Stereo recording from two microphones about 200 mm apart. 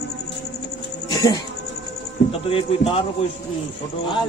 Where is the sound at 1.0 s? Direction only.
20° left (ahead or behind).